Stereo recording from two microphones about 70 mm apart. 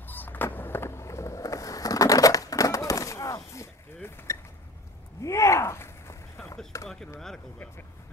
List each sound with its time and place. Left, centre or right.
0.0 s skateboard: left
5.2 s gasp: left
6.7 s chop: left